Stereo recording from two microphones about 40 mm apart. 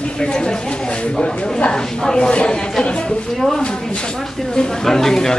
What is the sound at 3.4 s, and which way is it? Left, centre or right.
Speech, centre.